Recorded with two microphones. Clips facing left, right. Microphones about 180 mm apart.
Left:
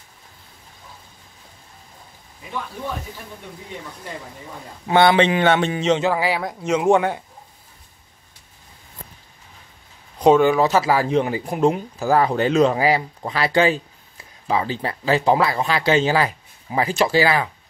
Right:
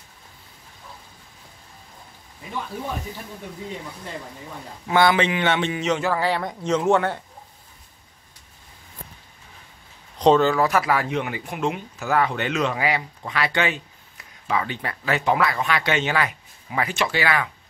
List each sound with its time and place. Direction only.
4.8 s speech: 30° left (ahead or behind)
5.4 s speech: 40° left (ahead or behind)
5.8 s speech: 25° left (ahead or behind)
10.1 s speech: 10° left (ahead or behind); by 17.5 s 30° left (ahead or behind)